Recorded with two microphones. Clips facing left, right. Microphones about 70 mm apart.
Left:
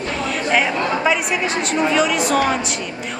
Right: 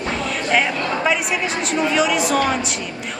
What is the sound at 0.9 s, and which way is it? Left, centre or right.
A woman's voice, centre.